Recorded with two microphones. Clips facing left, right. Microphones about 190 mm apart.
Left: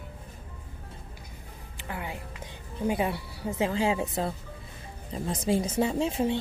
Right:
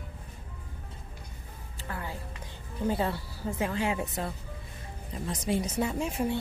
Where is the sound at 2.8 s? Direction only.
15° left (ahead or behind).